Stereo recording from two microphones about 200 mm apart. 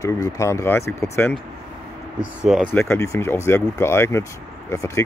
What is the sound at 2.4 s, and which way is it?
Speech, centre (ahead or behind).